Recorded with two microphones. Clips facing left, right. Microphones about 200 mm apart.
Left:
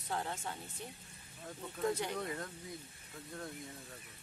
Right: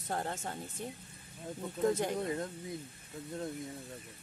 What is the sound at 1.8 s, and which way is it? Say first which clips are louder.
Speech: right 5 dB; 45° right (ahead or behind).